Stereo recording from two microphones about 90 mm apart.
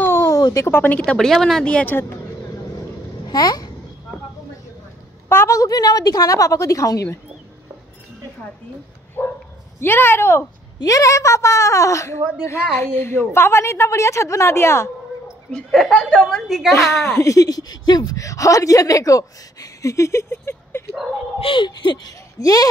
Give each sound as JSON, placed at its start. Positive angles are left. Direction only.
{"t": 0.0, "sound": "a sound", "side_deg": 25}
{"t": 0.3, "sound": "a sound", "side_deg": 40}
{"t": 0.7, "sound": "a woman's voice", "side_deg": 15}
{"t": 3.3, "sound": "a child's voice", "side_deg": 50}
{"t": 5.3, "sound": "a woman's voice", "side_deg": 30}
{"t": 9.2, "sound": "bow-wow", "side_deg": 25}
{"t": 9.8, "sound": "a woman's voice", "side_deg": 25}
{"t": 10.8, "sound": "a woman's voice", "side_deg": 40}
{"t": 15.5, "sound": "a woman's voice", "side_deg": 0}
{"t": 16.4, "sound": "speech", "side_deg": -5}
{"t": 17.0, "sound": "a woman's voice", "side_deg": 35}
{"t": 21.4, "sound": "speech", "side_deg": 70}